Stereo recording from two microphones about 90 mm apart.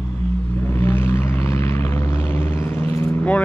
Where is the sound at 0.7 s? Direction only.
25° left (ahead or behind).